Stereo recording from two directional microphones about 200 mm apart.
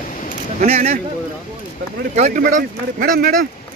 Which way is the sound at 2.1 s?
35° right (ahead or behind).